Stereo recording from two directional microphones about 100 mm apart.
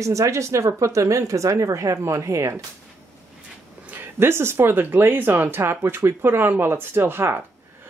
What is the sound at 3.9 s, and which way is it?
Speech, 20° right (ahead or behind).